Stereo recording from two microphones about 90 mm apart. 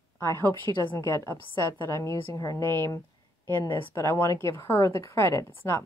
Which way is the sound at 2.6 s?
25° left (ahead or behind).